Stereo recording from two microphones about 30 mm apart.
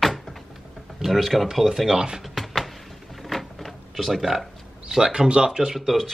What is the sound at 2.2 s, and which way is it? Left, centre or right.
Music, centre.